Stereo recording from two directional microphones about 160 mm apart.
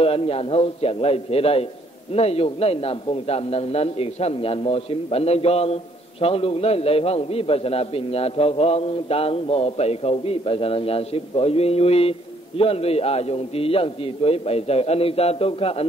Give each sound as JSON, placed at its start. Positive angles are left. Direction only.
{"t": 0.0, "sound": "a man's voice", "side_deg": 35}